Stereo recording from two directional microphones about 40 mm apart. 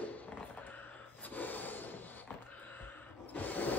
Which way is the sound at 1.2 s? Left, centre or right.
Left.